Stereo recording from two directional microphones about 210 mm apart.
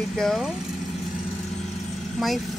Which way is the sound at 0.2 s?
Centre (ahead or behind).